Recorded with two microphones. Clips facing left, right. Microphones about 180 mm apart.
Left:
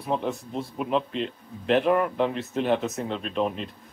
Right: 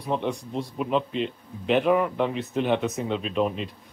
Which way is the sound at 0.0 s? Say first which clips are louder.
Even; 5° left (ahead or behind).